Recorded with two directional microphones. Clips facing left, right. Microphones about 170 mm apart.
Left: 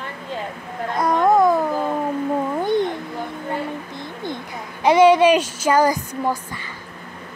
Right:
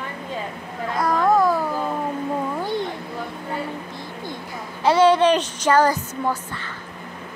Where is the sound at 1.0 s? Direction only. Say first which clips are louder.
Left 2 dB; 20° left (ahead or behind).